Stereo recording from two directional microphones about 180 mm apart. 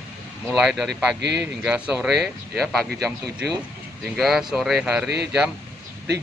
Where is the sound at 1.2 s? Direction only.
70° right (ahead or behind).